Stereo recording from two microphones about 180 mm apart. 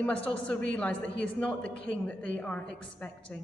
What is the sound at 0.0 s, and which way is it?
A woman's voice, 5° left (ahead or behind).